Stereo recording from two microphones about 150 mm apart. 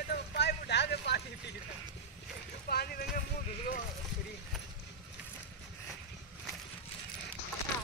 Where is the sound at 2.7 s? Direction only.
90° left.